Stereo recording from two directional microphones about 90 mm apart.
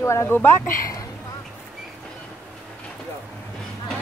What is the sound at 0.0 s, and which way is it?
Speech, 30° left (ahead or behind).